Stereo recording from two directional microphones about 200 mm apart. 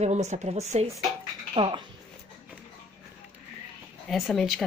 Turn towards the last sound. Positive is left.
turn(degrees=0)  # may be behind; listen again after turning